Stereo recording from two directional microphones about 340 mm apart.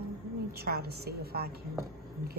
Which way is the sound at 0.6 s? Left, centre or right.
Right.